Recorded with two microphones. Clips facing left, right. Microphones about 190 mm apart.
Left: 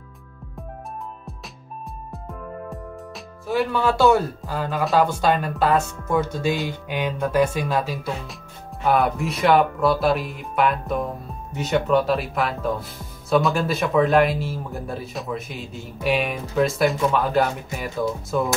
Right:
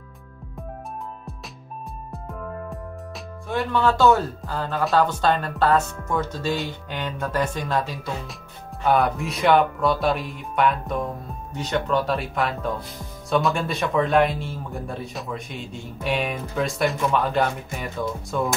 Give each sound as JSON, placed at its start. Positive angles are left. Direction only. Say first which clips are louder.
{"t": 3.4, "sound": "a man's voice", "louder": "left 1 dB", "side_deg": 5}